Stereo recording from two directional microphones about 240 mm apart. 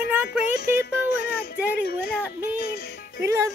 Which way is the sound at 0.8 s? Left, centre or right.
Left.